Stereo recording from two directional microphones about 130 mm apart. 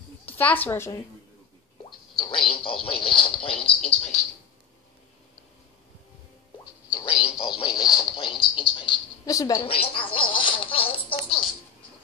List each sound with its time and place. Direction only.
0.4 s a woman's voice: 15° left (ahead or behind)
1.9 s a sound: 40° left (ahead or behind)
6.9 s radio: 45° left (ahead or behind)
8.0 s speech: 40° left (ahead or behind)
9.2 s a woman's voice: 25° left (ahead or behind)
9.6 s a sound: 45° left (ahead or behind)